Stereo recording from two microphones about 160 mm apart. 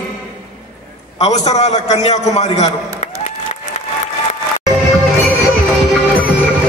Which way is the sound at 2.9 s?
45° left (ahead or behind).